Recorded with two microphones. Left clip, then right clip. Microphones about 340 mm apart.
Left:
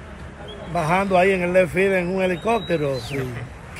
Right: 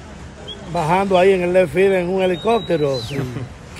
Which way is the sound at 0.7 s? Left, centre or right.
Right.